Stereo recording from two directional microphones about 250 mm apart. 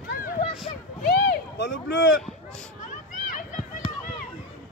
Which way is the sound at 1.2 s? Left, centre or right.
Left.